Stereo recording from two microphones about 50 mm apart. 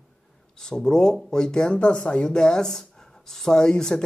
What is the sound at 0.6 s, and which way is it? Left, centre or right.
Speech, centre.